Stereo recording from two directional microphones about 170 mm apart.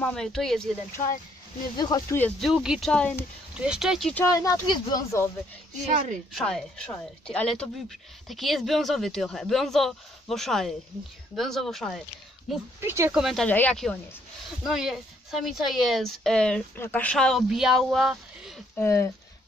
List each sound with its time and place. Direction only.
0.0 s a woman's voice: 5° left (ahead or behind)
1.8 s speech: 25° left (ahead or behind)
2.1 s speech: 10° left (ahead or behind)
2.5 s a woman's voice: 5° right (ahead or behind)
3.5 s a woman's voice: 5° right (ahead or behind)
4.1 s speech: 15° left (ahead or behind)
6.3 s a woman's voice: 5° left (ahead or behind)
12.8 s speech: 15° right (ahead or behind)
13.1 s a woman's voice: centre (ahead or behind)
18.8 s speech: 15° left (ahead or behind)